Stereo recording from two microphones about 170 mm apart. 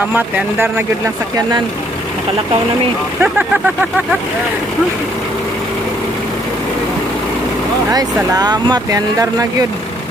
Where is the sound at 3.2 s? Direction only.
10° right (ahead or behind).